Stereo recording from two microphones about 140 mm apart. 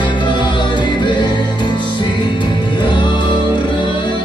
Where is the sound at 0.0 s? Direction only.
35° left (ahead or behind).